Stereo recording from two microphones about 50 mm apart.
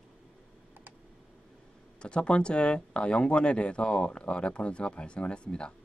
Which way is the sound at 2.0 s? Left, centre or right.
Left.